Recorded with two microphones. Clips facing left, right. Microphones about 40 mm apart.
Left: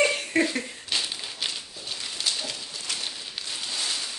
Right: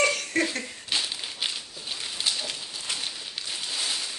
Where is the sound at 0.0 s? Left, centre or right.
Left.